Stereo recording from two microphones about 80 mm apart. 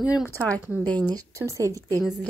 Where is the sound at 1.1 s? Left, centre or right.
Right.